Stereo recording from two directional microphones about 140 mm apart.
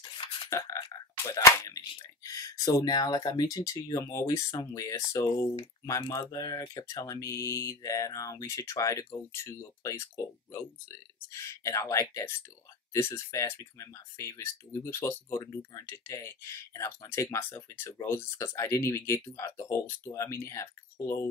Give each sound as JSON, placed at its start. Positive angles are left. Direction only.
{"t": 0.5, "sound": "speech", "side_deg": 20}